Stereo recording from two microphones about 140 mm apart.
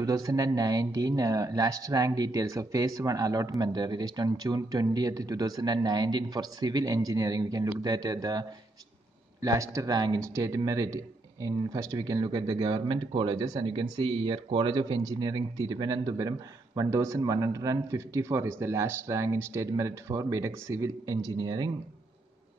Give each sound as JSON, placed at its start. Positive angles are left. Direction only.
{"t": 0.0, "sound": "speech", "side_deg": -25}